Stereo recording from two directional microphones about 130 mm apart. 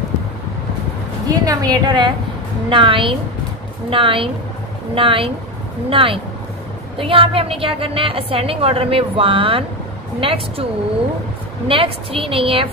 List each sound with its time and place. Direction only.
1.2 s a woman's voice: 30° right (ahead or behind); by 12.6 s 45° right (ahead or behind)